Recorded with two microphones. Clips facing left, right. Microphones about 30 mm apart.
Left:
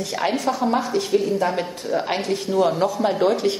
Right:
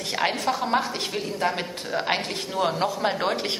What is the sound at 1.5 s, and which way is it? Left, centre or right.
Speech, centre.